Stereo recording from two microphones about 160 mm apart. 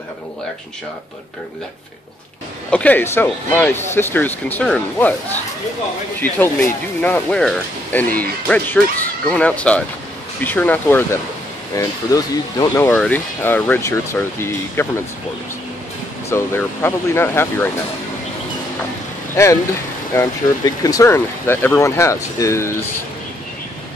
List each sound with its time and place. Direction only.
2.7 s speech: 10° left (ahead or behind)
7.0 s speech: 10° left (ahead or behind)
12.9 s speech: 10° left (ahead or behind)
16.3 s speech: 15° left (ahead or behind)
19.3 s speech: 20° left (ahead or behind)